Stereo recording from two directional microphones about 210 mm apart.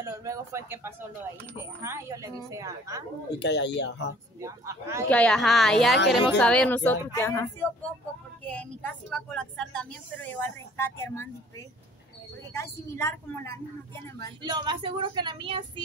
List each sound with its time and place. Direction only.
0.0 s speech: 15° right (ahead or behind)
3.3 s speech: 55° left (ahead or behind)
4.4 s speech: 15° right (ahead or behind)
5.1 s a woman's voice: 5° left (ahead or behind)
8.5 s a woman's voice: 5° left (ahead or behind)
12.5 s a woman's voice: 10° left (ahead or behind)
14.4 s speech: 20° right (ahead or behind)